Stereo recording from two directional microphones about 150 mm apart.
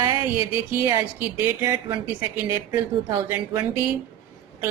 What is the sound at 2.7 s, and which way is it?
A woman's voice, 20° right (ahead or behind).